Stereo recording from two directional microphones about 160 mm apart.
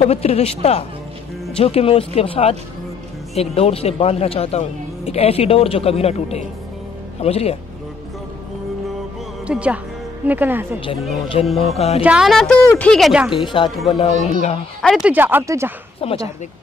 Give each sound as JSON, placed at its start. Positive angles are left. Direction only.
{"t": 0.0, "sound": "speech", "side_deg": 40}
{"t": 9.5, "sound": "speech", "side_deg": -5}
{"t": 11.6, "sound": "speech", "side_deg": 40}
{"t": 12.0, "sound": "a woman's voice", "side_deg": -5}
{"t": 13.3, "sound": "speech", "side_deg": 30}
{"t": 13.9, "sound": "speech", "side_deg": 40}
{"t": 14.8, "sound": "speech", "side_deg": 0}
{"t": 15.0, "sound": "speech", "side_deg": -10}
{"t": 16.0, "sound": "speech", "side_deg": 35}